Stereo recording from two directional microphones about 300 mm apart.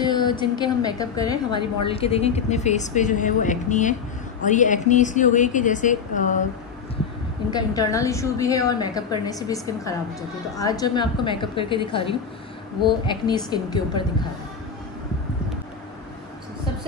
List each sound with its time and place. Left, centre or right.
0.0 s a woman's voice: centre
7.5 s a woman's voice: centre